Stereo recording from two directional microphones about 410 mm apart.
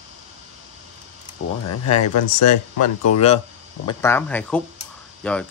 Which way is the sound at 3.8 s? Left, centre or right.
Centre.